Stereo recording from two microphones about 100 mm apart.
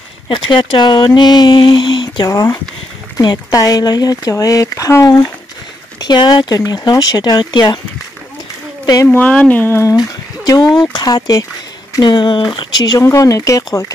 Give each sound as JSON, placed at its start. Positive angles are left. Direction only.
{"t": 0.3, "sound": "speech", "side_deg": 55}
{"t": 2.2, "sound": "speech", "side_deg": 35}
{"t": 5.9, "sound": "speech", "side_deg": 45}
{"t": 9.0, "sound": "speech", "side_deg": 15}
{"t": 9.9, "sound": "a sound", "side_deg": 40}
{"t": 10.8, "sound": "speech", "side_deg": 45}